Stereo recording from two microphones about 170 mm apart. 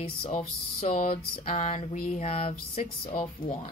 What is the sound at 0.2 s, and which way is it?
Speech, 40° left (ahead or behind).